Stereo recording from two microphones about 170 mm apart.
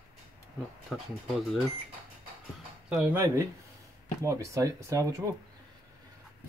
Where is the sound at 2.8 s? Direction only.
5° right (ahead or behind).